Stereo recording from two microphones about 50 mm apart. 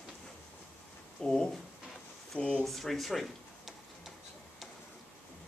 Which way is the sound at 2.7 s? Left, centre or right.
Centre.